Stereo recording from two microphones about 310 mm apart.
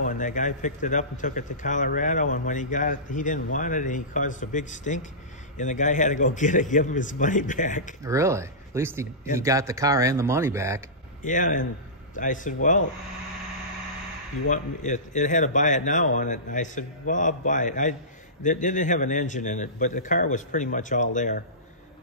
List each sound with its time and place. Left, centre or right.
0.0 s a man's voice: left
8.0 s speech: centre
11.2 s a man's voice: left
14.5 s a man's voice: left